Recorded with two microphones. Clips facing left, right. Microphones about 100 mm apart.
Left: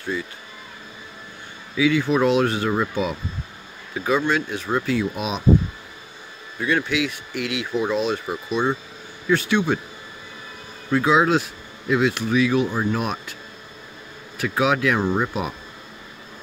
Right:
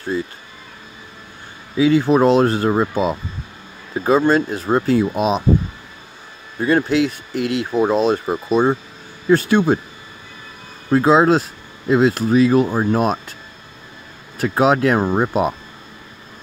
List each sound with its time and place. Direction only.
1.8 s speech: 40° right (ahead or behind)
6.6 s speech: 40° right (ahead or behind)
10.9 s speech: 35° right (ahead or behind)
14.4 s speech: 40° right (ahead or behind)